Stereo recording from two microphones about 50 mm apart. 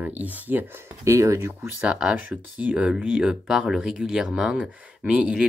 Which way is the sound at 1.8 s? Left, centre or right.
Right.